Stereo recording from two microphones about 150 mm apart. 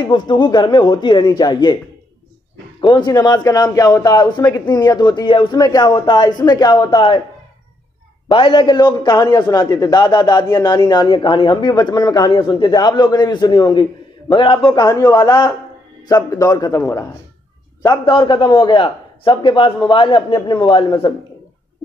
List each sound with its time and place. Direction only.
0.3 s a man's voice: 30° left (ahead or behind)
3.1 s a man's voice: 25° left (ahead or behind)
8.3 s a man's voice: 35° left (ahead or behind)
17.8 s a man's voice: 30° left (ahead or behind)